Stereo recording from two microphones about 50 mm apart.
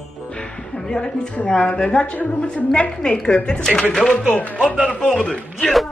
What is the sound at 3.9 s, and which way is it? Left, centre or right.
Speech, centre.